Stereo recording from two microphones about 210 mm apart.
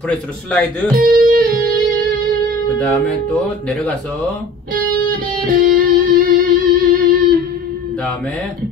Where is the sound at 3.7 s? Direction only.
5° left (ahead or behind).